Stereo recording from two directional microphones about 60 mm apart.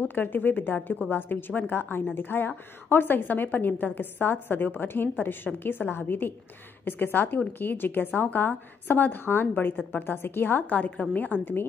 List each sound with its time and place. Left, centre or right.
0.0 s a woman's voice: left
11.0 s a woman's voice: left